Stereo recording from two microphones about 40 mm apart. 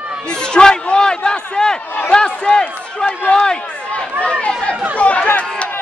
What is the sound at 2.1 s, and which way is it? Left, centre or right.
Run, left.